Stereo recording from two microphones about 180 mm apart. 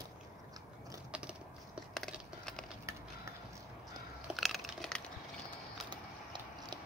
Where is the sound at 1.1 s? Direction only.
5° right (ahead or behind).